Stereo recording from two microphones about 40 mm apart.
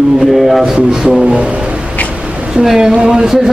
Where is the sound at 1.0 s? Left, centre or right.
Right.